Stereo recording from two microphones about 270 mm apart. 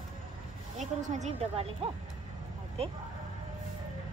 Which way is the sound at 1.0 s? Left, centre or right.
Right.